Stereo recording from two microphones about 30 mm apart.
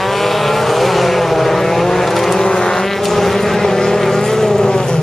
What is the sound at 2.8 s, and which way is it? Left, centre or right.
Vehicle, centre.